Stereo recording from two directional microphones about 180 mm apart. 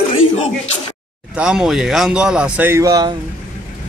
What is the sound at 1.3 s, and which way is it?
Speech, 5° right (ahead or behind).